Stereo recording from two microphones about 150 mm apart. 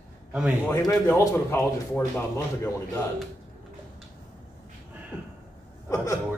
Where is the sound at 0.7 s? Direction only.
20° left (ahead or behind).